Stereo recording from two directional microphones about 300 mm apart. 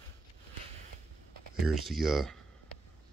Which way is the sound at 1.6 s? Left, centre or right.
Centre.